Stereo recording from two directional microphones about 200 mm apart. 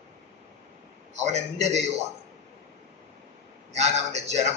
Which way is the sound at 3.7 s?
35° right (ahead or behind).